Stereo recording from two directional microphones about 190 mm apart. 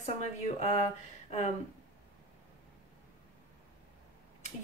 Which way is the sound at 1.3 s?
35° left (ahead or behind).